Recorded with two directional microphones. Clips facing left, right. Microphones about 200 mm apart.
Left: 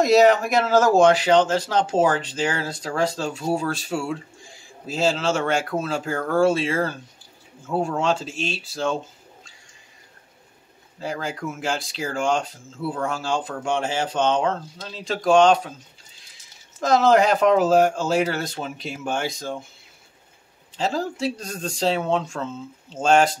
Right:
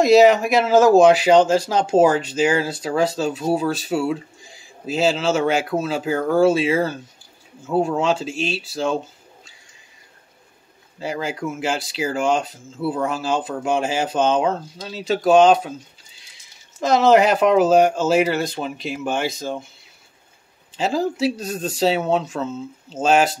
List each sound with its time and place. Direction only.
0.0 s speech: centre (ahead or behind)
11.0 s speech: 5° right (ahead or behind)
16.8 s speech: centre (ahead or behind)
20.7 s speech: 5° right (ahead or behind)